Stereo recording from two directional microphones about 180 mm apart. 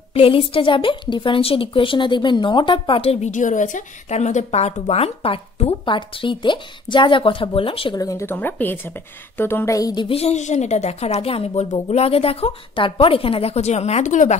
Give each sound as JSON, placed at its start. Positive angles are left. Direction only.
{"t": 0.1, "sound": "a woman's voice", "side_deg": 30}